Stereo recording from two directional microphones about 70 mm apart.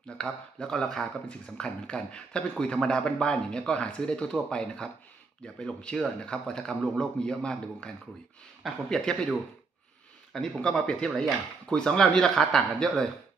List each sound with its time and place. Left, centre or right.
0.2 s speech: centre
10.3 s speech: centre